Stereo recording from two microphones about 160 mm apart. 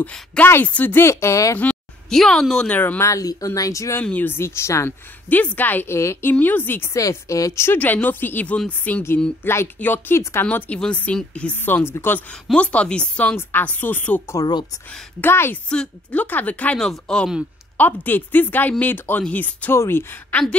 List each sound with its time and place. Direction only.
0.0 s speech: 5° left (ahead or behind)
1.7 s speech: 5° left (ahead or behind); by 14.7 s 25° left (ahead or behind)
14.9 s speech: 10° left (ahead or behind)
17.7 s speech: 10° left (ahead or behind)